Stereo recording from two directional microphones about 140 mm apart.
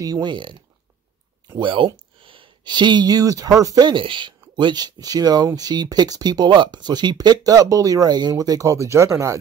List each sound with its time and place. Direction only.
0.0 s speech: 30° right (ahead or behind)